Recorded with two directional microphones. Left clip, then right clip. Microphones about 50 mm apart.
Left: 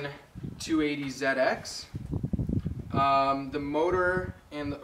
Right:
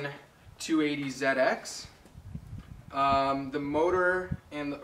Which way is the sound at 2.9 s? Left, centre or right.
Centre.